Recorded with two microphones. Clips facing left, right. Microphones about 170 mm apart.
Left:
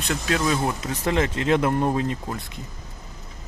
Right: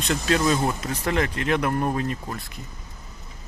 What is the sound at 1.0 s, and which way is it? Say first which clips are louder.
Speech: left 2 dB; 20° left (ahead or behind).